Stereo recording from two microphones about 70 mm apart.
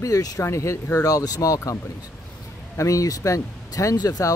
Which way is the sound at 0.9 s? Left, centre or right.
Left.